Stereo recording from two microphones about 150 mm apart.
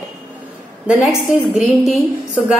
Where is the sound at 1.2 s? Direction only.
Centre (ahead or behind).